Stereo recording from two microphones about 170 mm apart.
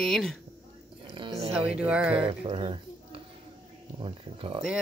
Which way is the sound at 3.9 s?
30° right (ahead or behind).